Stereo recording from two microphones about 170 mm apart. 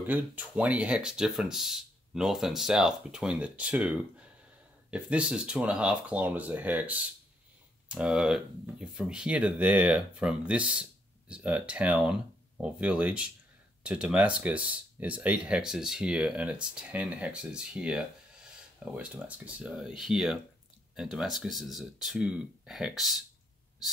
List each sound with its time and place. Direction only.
0.0 s speech: 10° right (ahead or behind)
4.9 s speech: 5° right (ahead or behind)